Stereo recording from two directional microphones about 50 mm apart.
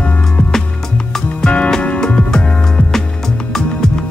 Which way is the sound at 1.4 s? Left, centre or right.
Left.